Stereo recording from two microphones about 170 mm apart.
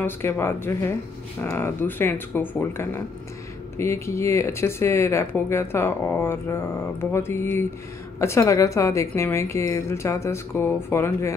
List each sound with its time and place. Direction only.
0.0 s speech: 15° left (ahead or behind)